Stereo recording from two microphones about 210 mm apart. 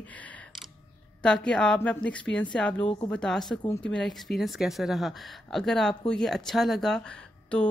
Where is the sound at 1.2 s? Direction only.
5° left (ahead or behind).